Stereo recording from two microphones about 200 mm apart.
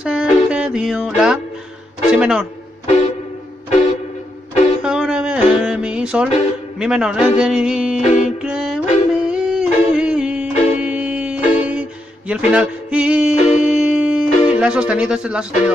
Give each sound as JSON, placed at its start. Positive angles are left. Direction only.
{"t": 0.0, "sound": "music", "side_deg": -5}
{"t": 2.1, "sound": "speech", "side_deg": -5}
{"t": 4.8, "sound": "music", "side_deg": -5}
{"t": 6.8, "sound": "speech", "side_deg": -5}
{"t": 8.0, "sound": "music", "side_deg": 35}
{"t": 8.4, "sound": "music", "side_deg": -5}